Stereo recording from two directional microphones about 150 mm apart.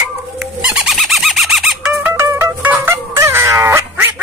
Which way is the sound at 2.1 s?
15° right (ahead or behind).